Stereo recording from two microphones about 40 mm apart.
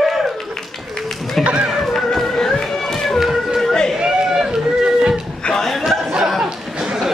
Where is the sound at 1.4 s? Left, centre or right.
Right.